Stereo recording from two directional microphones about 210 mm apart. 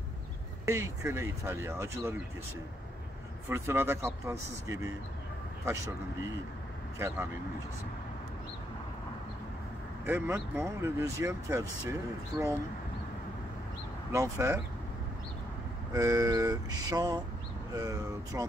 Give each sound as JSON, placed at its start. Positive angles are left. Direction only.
{"t": 0.7, "sound": "speech", "side_deg": -10}
{"t": 3.4, "sound": "speech", "side_deg": -10}
{"t": 10.0, "sound": "speech", "side_deg": -10}
{"t": 14.1, "sound": "speech", "side_deg": -15}
{"t": 15.9, "sound": "speech", "side_deg": -15}